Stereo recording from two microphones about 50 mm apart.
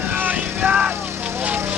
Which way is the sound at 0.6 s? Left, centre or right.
Right.